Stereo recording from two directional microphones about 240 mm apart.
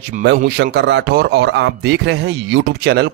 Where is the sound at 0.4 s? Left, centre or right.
Right.